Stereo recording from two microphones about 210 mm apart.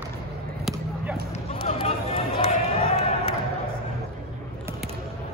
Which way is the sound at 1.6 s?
25° left (ahead or behind).